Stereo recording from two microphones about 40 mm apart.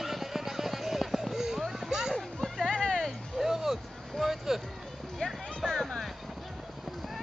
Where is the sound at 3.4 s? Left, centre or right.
Centre.